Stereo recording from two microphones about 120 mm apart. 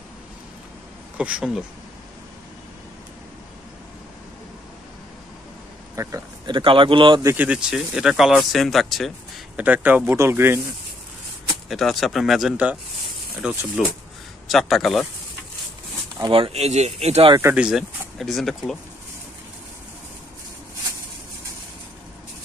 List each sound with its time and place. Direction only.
1.1 s speech: 10° right (ahead or behind)
6.0 s speech: 30° right (ahead or behind)
6.4 s speech: 45° right (ahead or behind)
7.3 s speech: 10° right (ahead or behind)
9.6 s speech: 10° right (ahead or behind)
11.7 s speech: centre (ahead or behind)
14.5 s speech: centre (ahead or behind)
16.2 s speech: 45° right (ahead or behind); by 17.3 s 65° right (ahead or behind)
17.6 s speech: 5° right (ahead or behind)